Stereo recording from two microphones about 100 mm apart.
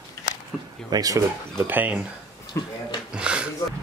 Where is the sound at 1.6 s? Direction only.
15° right (ahead or behind).